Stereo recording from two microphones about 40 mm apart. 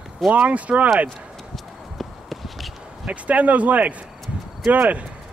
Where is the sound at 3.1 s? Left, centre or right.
Right.